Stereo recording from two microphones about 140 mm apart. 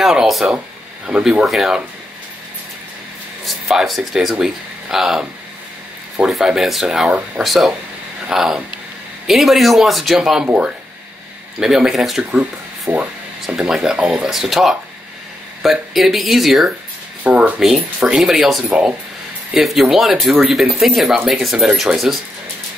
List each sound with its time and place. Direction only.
0.0 s speech: centre (ahead or behind)
3.4 s speech: centre (ahead or behind)